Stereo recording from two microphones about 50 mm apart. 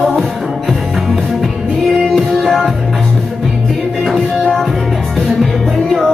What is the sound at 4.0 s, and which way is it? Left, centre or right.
Music, centre.